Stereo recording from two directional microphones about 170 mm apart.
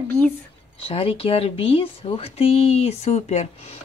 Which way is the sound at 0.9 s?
35° left (ahead or behind).